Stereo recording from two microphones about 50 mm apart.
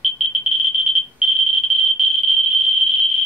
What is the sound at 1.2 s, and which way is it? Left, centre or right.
Fire alarm, centre.